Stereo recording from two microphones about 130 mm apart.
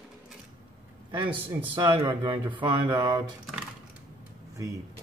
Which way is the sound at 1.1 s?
40° right (ahead or behind).